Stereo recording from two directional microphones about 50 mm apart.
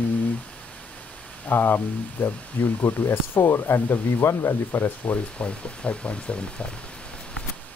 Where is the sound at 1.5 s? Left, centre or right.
Left.